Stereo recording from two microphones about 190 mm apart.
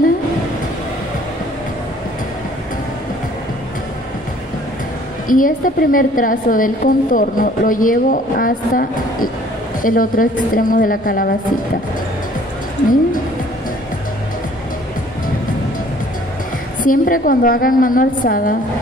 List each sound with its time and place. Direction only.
5.3 s a woman's voice: 45° left (ahead or behind)
16.8 s a woman's voice: 45° left (ahead or behind)